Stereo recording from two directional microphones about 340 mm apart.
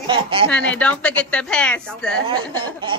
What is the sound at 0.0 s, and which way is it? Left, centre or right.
Speech, centre.